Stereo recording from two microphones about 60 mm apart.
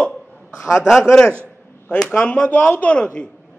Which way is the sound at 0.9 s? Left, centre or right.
Centre.